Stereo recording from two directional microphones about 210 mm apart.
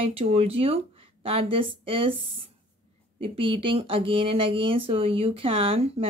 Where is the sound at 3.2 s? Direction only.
25° right (ahead or behind).